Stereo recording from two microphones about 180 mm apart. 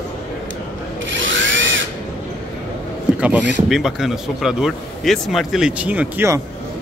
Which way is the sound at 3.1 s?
5° right (ahead or behind).